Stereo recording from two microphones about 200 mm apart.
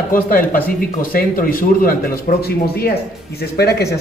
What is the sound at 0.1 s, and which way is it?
Speech, 45° left (ahead or behind).